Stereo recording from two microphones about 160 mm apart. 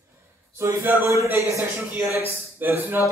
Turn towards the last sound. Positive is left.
turn(degrees=-15)  # may be behind; listen again after turning